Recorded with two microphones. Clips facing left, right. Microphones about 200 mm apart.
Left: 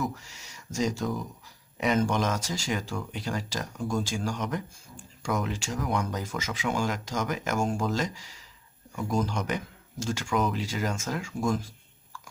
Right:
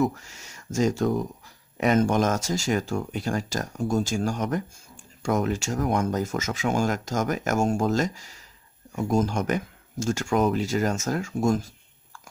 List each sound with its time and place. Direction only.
0.0 s speech: 50° right (ahead or behind)